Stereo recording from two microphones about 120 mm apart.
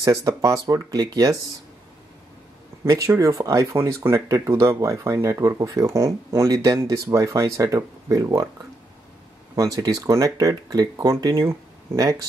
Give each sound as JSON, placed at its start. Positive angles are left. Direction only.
{"t": 0.0, "sound": "speech", "side_deg": -30}
{"t": 2.8, "sound": "speech", "side_deg": -25}
{"t": 9.6, "sound": "speech", "side_deg": -30}